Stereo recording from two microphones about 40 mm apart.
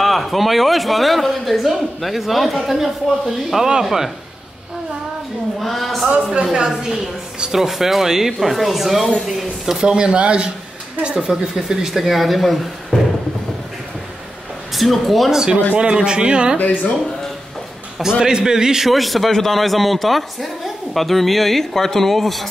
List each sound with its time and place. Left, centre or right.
0.0 s a woman's voice: centre
5.6 s a woman's voice: centre
6.5 s speech: centre
7.5 s speech: centre
9.8 s speech: right
11.1 s speech: centre
12.0 s a woman's voice: centre
12.9 s music: centre
14.7 s a woman's voice: centre
15.7 s speech: right
16.5 s speech: left
18.0 s speech: centre
18.9 s a woman's voice: centre